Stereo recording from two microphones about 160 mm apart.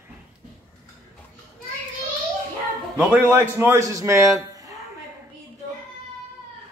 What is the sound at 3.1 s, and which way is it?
A man's voice, 15° right (ahead or behind).